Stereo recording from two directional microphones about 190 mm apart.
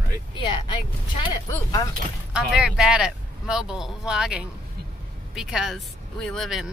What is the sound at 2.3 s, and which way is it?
Speech, 5° right (ahead or behind).